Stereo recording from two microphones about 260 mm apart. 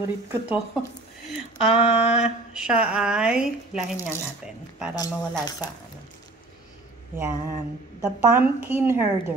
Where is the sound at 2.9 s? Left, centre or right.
Centre.